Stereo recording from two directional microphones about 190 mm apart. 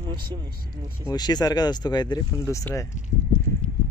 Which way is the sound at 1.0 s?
20° left (ahead or behind).